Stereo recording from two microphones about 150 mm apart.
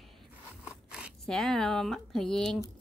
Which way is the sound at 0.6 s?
5° right (ahead or behind).